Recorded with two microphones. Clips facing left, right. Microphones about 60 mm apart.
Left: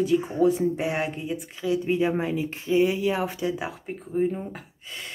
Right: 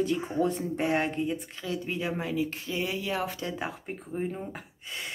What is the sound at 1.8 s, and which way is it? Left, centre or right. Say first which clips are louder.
Speech: left 8 dB; left.